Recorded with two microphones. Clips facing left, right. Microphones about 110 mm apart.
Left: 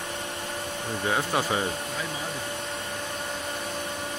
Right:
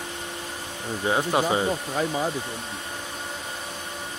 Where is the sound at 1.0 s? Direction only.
20° right (ahead or behind).